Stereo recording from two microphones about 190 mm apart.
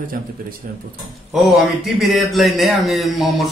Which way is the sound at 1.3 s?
Centre (ahead or behind).